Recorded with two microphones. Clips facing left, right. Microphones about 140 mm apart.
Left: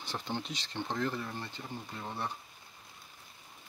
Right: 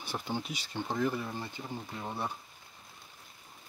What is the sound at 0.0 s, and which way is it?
Speech, 10° right (ahead or behind).